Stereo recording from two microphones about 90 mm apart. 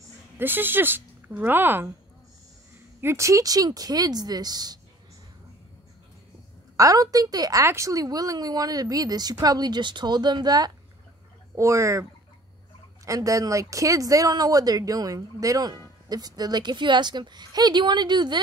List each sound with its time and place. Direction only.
0.4 s speech: 20° right (ahead or behind)
3.0 s speech: 30° right (ahead or behind); by 4.7 s 50° right (ahead or behind)
6.8 s speech: 40° right (ahead or behind)
7.6 s speech: 35° right (ahead or behind); by 10.7 s 50° right (ahead or behind)
11.5 s speech: 35° right (ahead or behind); by 18.4 s 55° right (ahead or behind)